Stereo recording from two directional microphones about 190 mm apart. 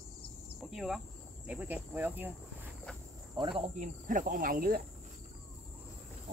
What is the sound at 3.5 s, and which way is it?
Cricket, 40° right (ahead or behind).